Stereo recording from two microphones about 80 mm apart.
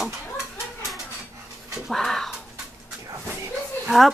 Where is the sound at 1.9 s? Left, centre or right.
Centre.